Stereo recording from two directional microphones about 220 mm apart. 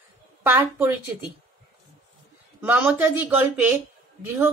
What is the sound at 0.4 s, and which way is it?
Speech, 10° right (ahead or behind).